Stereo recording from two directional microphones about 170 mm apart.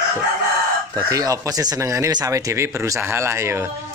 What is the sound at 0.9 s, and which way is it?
Speech, 20° right (ahead or behind).